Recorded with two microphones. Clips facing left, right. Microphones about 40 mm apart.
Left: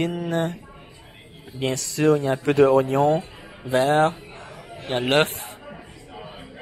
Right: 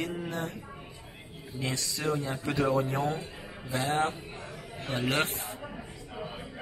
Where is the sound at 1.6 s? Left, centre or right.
Left.